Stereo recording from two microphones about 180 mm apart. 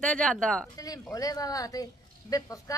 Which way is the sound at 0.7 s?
20° left (ahead or behind).